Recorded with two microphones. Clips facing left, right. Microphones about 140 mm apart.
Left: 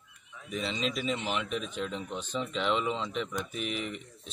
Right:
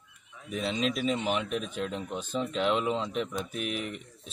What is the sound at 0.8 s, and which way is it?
Speech, centre (ahead or behind).